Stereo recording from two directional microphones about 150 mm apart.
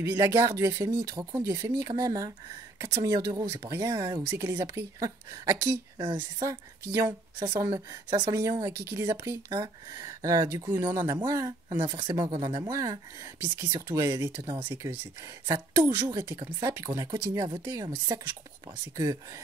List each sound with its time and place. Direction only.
0.0 s speech: 20° right (ahead or behind)